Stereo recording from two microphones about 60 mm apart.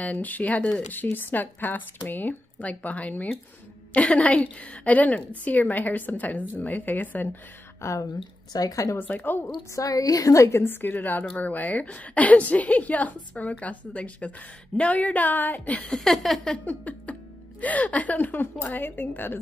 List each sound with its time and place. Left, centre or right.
0.0 s a woman's voice: left
7.8 s speech: left
8.5 s a woman's voice: left
8.9 s speech: left
9.8 s a woman's voice: left
10.4 s a woman's voice: left
10.7 s a woman's voice: left
15.9 s a sound: centre
16.6 s speech: left